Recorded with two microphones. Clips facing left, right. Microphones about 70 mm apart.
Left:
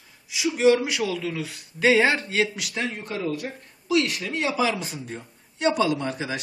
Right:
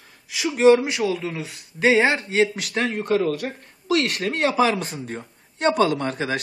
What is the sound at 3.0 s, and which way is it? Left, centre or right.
Speech, right.